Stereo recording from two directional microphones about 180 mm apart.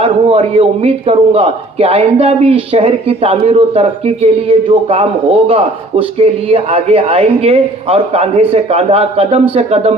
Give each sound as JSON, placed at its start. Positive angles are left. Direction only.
{"t": 0.0, "sound": "a man's voice", "side_deg": -30}